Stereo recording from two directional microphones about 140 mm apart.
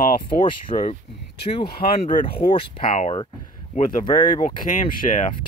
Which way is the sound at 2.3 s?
40° left (ahead or behind).